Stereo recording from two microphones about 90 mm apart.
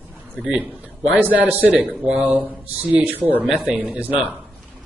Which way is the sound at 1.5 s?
20° right (ahead or behind).